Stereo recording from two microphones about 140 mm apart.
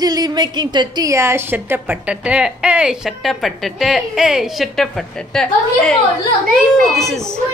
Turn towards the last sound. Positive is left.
turn(degrees=0)  # may be behind; listen again after turning